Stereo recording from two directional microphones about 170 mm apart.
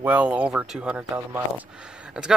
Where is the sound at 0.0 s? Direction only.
10° right (ahead or behind).